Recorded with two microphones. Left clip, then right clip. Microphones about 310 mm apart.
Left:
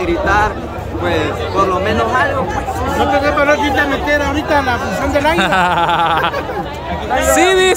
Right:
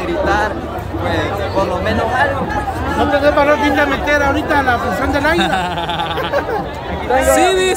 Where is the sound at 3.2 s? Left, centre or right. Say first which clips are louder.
Right 1 dB; right.